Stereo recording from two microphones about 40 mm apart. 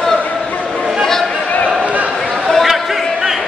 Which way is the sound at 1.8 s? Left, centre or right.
Right.